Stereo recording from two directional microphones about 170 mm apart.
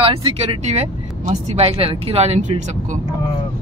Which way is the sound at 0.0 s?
35° right (ahead or behind).